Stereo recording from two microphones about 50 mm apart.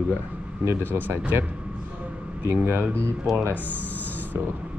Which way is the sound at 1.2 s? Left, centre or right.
Right.